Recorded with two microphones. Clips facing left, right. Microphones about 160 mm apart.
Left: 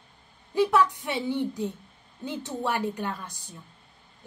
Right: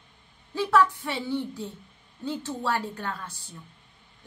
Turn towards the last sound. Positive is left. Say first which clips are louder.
# even
turn(degrees=15)  # may be behind; listen again after turning